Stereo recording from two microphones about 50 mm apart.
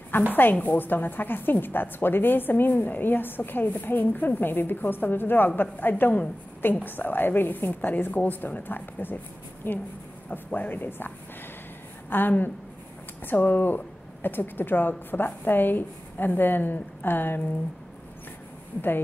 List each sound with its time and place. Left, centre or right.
0.3 s a woman's voice: left